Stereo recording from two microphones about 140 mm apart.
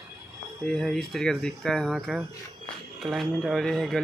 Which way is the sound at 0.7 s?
5° left (ahead or behind).